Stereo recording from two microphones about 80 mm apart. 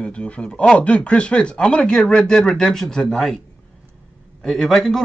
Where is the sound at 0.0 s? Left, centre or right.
Centre.